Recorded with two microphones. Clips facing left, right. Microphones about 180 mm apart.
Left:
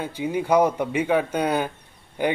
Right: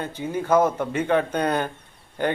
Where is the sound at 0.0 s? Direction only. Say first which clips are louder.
Left 2 dB; 10° left (ahead or behind).